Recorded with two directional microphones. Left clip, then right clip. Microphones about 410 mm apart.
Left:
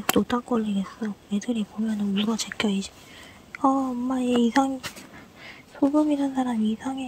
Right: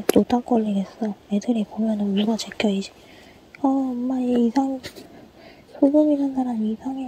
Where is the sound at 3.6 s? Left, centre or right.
Centre.